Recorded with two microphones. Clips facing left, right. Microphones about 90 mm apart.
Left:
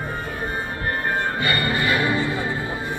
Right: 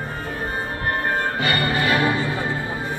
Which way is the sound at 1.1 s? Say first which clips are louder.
Right 1 dB; 85° right.